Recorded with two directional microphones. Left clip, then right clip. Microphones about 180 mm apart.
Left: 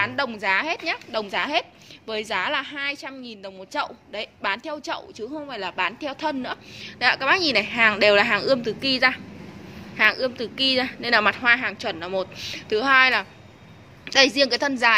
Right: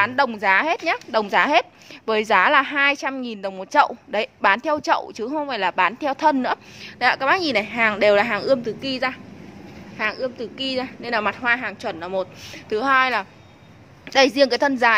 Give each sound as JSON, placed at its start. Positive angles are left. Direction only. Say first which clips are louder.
{"t": 0.0, "sound": "a woman's voice", "louder": "right 5 dB", "side_deg": -25}